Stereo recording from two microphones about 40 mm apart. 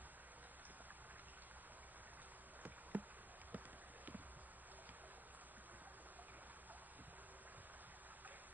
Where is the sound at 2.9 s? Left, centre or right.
Right.